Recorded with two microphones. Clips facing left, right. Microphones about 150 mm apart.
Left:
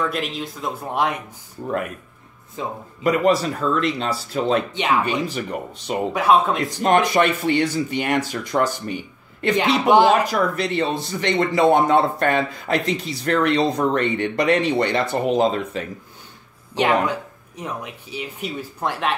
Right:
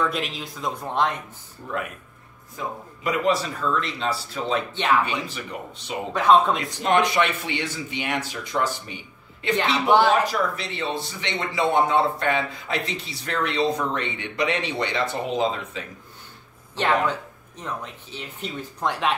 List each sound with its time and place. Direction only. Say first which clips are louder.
0.0 s speech: left 2 dB; centre (ahead or behind)
2.6 s a man's voice: left 3 dB; 25° left (ahead or behind)
3.0 s speech: left 5 dB; 50° left (ahead or behind)
6.1 s speech: even; 5° left (ahead or behind)
6.8 s speech: left 4 dB; 45° left (ahead or behind)
9.6 s speech: left 4 dB; 15° left (ahead or behind)
10.5 s speech: left 7 dB; 45° left (ahead or behind)
16.7 s speech: left 3 dB; 15° left (ahead or behind)